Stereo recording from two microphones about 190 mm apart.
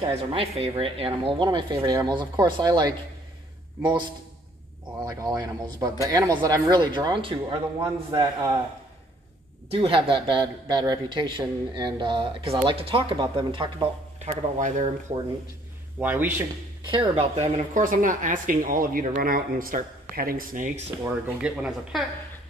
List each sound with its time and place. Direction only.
0.1 s a woman's voice: 30° right (ahead or behind)
5.0 s a woman's voice: 20° right (ahead or behind)
9.7 s a woman's voice: 30° right (ahead or behind)
14.2 s speech: 40° right (ahead or behind)
16.0 s a man's voice: 10° right (ahead or behind)
16.9 s speech: 30° right (ahead or behind)
21.0 s speech: 5° right (ahead or behind)